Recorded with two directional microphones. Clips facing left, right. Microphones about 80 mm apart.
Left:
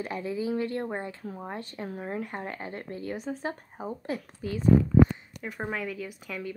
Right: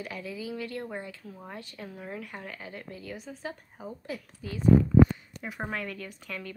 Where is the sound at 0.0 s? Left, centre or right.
Left.